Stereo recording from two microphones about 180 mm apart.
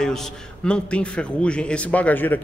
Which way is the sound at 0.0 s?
5° left (ahead or behind).